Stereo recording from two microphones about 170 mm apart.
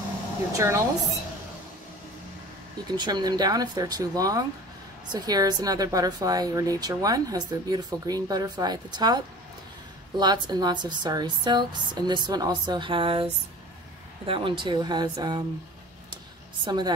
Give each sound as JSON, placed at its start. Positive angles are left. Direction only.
{"t": 0.5, "sound": "speech", "side_deg": -20}
{"t": 2.9, "sound": "speech", "side_deg": -25}
{"t": 16.6, "sound": "speech", "side_deg": -25}